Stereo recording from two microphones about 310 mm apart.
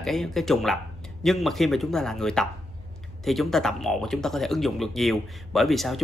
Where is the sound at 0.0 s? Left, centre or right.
Centre.